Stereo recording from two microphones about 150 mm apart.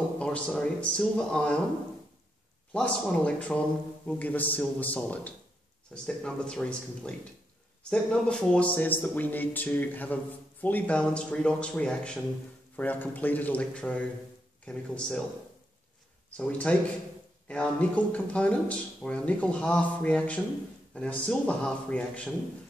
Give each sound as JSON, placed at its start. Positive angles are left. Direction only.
{"t": 0.2, "sound": "speech", "side_deg": 5}
{"t": 2.7, "sound": "speech", "side_deg": 10}
{"t": 16.3, "sound": "speech", "side_deg": 10}